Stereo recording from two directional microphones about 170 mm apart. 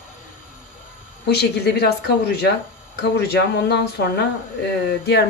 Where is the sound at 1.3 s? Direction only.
75° left (ahead or behind).